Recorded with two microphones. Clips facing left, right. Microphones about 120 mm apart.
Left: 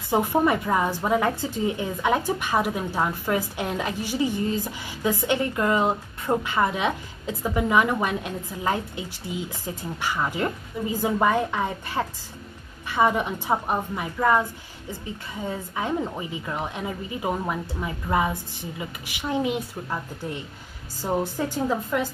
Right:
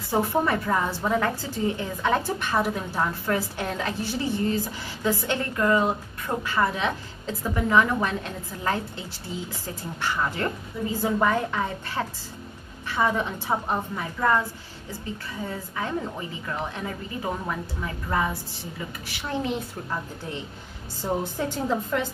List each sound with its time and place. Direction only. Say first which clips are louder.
0.1 s a woman's voice: left 2 dB; 15° left (ahead or behind)
21.0 s a woman's voice: left 2 dB; 10° left (ahead or behind)